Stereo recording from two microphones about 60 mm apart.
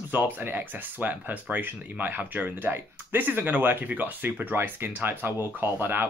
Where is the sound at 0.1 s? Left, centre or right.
Right.